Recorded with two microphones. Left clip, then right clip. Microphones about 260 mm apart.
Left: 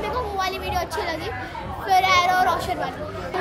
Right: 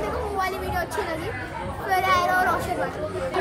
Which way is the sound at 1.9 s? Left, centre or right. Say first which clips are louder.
Left 4 dB; centre.